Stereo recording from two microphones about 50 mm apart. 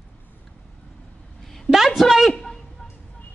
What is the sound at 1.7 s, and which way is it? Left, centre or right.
Speech, centre.